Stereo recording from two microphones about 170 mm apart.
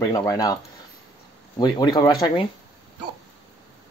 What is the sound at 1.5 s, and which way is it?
Speech, 25° left (ahead or behind).